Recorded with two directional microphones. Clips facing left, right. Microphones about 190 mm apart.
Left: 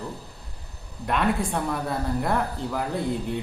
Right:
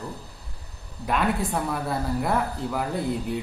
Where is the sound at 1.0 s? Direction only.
Centre (ahead or behind).